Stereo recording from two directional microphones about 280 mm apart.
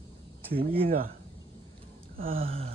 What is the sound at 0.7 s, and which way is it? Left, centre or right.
Gasp, right.